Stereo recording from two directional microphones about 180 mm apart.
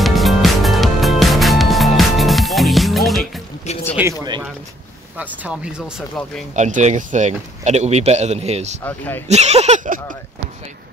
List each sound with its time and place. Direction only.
0.0 s music: centre (ahead or behind)
3.7 s a sound: 40° left (ahead or behind)
4.0 s speech: 20° right (ahead or behind)
5.1 s speech: 10° right (ahead or behind)
6.5 s speech: 40° right (ahead or behind)
8.8 s speech: 10° left (ahead or behind)
9.3 s speech: 35° right (ahead or behind)